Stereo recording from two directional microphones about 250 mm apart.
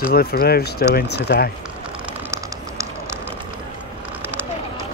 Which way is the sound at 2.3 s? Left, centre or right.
Centre.